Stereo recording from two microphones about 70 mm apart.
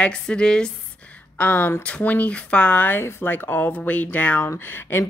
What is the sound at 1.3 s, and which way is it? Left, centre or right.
A woman's voice, left.